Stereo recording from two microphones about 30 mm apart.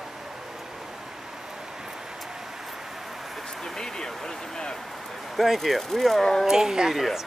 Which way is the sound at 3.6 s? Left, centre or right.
Centre.